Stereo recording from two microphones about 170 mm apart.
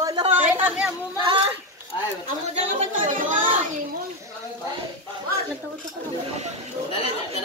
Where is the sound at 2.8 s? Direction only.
50° right (ahead or behind).